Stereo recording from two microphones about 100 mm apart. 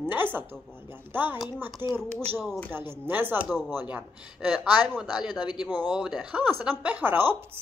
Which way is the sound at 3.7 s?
15° right (ahead or behind).